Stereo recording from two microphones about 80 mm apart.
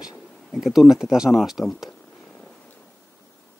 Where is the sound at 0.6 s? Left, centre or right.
Centre.